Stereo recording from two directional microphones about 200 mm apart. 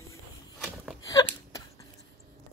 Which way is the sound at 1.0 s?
15° left (ahead or behind).